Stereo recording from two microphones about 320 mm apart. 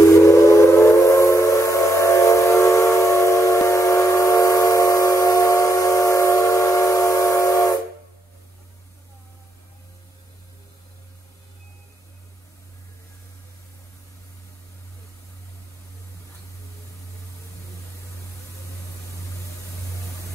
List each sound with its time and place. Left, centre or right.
0.0 s train: centre